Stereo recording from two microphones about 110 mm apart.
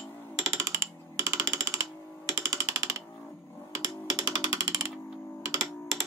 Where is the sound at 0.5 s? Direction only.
25° right (ahead or behind).